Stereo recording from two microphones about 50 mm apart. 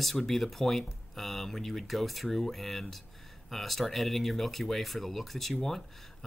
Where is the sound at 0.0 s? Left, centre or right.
Centre.